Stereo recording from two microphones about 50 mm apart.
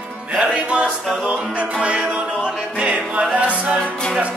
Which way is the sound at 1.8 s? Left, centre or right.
Right.